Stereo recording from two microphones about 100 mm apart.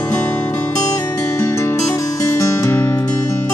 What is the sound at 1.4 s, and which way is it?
Music, 30° left (ahead or behind).